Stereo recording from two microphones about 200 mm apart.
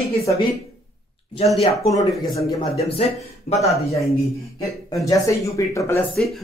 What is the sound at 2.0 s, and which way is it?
Speech, 20° left (ahead or behind).